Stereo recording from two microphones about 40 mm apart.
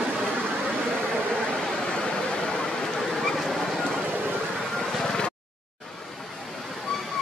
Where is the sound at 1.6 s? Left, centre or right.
Centre.